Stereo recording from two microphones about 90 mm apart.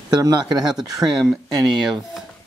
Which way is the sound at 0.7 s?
5° right (ahead or behind).